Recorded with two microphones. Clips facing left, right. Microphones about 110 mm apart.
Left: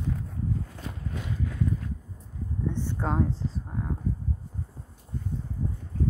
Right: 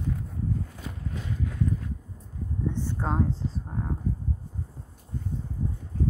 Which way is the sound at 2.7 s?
15° right (ahead or behind).